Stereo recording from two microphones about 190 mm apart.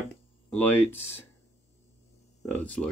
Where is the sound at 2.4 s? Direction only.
5° left (ahead or behind).